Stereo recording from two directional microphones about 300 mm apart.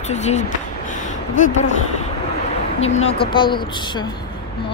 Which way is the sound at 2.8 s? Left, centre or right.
Left.